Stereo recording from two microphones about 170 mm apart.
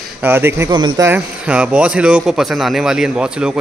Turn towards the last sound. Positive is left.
turn(degrees=-5)  # may be behind; listen again after turning